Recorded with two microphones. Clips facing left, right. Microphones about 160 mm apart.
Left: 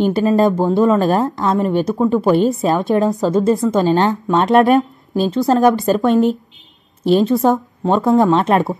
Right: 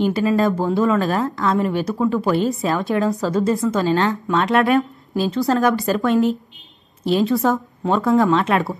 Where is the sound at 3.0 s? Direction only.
20° left (ahead or behind).